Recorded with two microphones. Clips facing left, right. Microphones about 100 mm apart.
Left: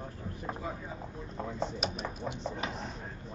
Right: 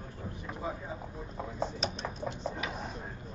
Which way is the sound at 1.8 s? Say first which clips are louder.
Even; 5° left (ahead or behind).